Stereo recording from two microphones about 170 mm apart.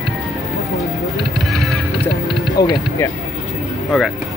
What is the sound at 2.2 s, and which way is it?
Music, 25° left (ahead or behind).